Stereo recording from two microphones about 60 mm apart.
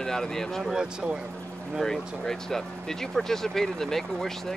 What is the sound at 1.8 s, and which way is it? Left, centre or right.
Speech, centre.